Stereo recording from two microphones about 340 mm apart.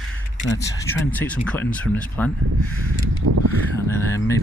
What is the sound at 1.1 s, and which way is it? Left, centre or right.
Speech, centre.